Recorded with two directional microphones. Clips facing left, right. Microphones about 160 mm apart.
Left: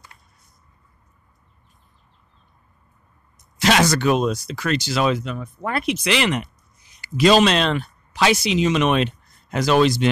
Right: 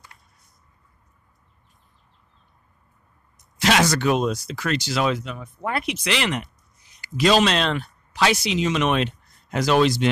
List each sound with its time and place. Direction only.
3.8 s speech: 45° left (ahead or behind)
5.2 s speech: 10° right (ahead or behind)
6.0 s speech: 10° left (ahead or behind)
9.5 s speech: 45° left (ahead or behind)